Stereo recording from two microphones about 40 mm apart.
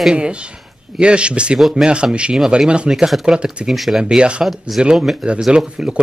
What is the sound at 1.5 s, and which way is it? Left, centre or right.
Speech, centre.